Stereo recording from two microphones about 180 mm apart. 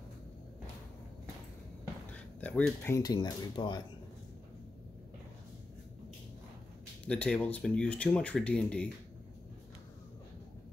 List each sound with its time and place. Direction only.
2.4 s speech: 5° left (ahead or behind)
3.0 s speech: 25° left (ahead or behind)
7.1 s speech: 5° left (ahead or behind)